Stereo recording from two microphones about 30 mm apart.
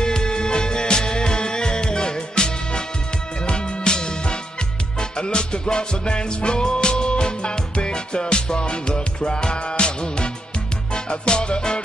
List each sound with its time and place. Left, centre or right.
0.0 s music: left